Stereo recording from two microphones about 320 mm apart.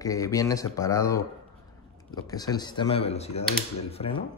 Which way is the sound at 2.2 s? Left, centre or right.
Centre.